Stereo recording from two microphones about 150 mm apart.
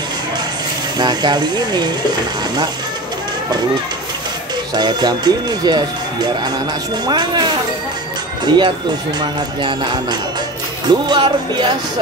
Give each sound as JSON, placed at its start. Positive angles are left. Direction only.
{"t": 0.9, "sound": "speech", "side_deg": -30}
{"t": 4.7, "sound": "speech", "side_deg": -30}
{"t": 10.9, "sound": "speech", "side_deg": -30}